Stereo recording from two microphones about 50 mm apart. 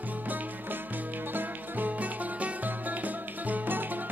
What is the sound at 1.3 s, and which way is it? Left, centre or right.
Music, right.